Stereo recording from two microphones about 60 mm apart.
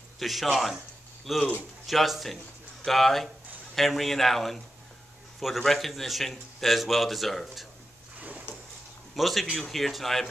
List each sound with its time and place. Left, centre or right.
0.2 s a man's voice: centre
8.2 s drawer open or close: right
9.1 s a man's voice: centre